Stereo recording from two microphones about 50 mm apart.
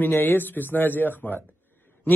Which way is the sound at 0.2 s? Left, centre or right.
Left.